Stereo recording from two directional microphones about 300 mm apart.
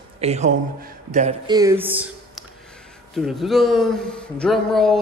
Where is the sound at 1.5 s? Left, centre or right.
Centre.